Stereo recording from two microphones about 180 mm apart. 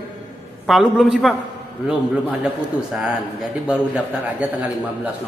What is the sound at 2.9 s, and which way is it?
A man's voice, 5° right (ahead or behind).